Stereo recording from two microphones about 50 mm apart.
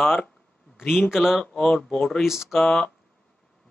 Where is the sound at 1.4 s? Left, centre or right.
Centre.